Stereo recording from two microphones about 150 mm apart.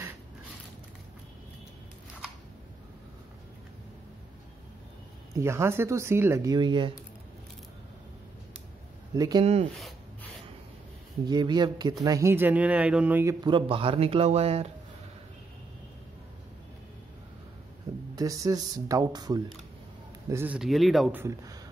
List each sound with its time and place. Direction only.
5.3 s speech: 15° right (ahead or behind)
9.1 s speech: 25° right (ahead or behind)
11.2 s speech: 30° right (ahead or behind)
13.5 s speech: 35° right (ahead or behind)
18.1 s a man's voice: 25° right (ahead or behind)
20.5 s speech: centre (ahead or behind)
21.1 s speech: 20° right (ahead or behind)